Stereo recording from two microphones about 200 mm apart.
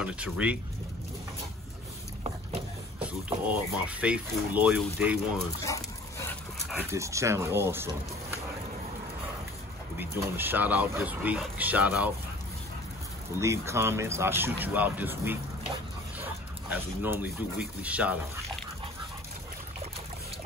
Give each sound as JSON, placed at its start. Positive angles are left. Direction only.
{"t": 0.0, "sound": "speech", "side_deg": -5}
{"t": 3.0, "sound": "speech", "side_deg": -5}
{"t": 5.6, "sound": "dog", "side_deg": 15}
{"t": 6.7, "sound": "speech", "side_deg": -10}
{"t": 9.9, "sound": "speech", "side_deg": -10}
{"t": 13.4, "sound": "speech", "side_deg": -15}